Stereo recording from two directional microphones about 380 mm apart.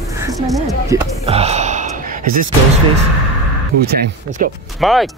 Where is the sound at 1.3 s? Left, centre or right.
Centre.